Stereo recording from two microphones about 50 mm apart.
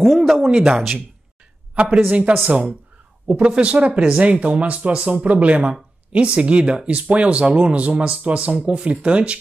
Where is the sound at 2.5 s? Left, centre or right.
Centre.